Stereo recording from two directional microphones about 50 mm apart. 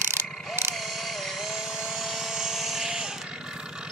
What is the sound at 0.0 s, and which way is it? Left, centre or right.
Ratchet, right.